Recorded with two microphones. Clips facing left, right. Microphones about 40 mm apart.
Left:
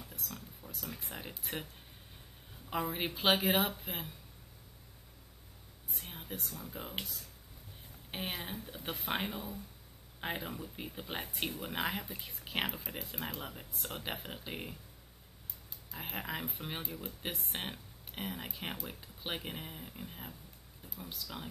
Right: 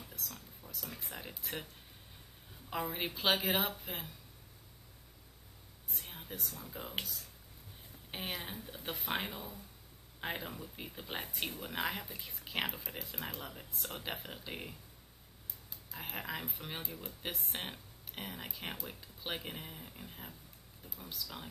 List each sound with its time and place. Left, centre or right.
0.7 s speech: centre
2.7 s speech: centre
5.9 s a sound: centre
6.4 s speech: centre
8.1 s speech: centre
15.9 s speech: centre